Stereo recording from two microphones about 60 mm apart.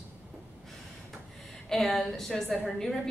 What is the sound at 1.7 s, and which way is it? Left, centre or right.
A woman's voice, centre.